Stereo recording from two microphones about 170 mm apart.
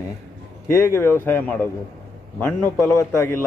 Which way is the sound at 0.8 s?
15° left (ahead or behind).